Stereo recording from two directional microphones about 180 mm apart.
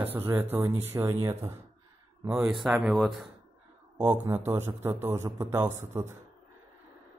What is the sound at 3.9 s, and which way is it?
Speech, 15° right (ahead or behind).